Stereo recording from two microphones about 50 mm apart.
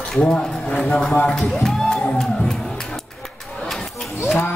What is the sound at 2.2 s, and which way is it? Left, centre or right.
Music, centre.